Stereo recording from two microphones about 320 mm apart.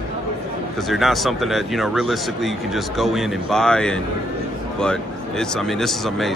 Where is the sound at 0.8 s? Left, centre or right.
Centre.